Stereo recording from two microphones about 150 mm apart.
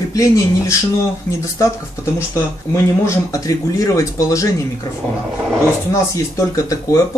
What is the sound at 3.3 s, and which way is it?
Speech, 20° left (ahead or behind).